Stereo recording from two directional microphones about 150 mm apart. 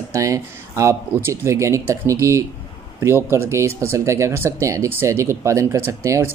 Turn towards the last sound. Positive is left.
turn(degrees=-20)  # may be behind; listen again after turning